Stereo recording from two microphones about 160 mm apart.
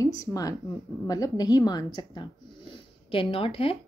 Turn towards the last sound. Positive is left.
turn(degrees=35)  # may be behind; listen again after turning